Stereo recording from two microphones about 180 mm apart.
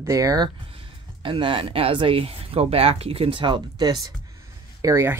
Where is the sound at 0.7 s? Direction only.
30° right (ahead or behind).